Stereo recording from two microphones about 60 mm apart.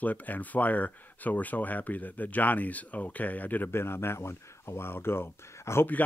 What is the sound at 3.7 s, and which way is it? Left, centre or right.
Speech, left.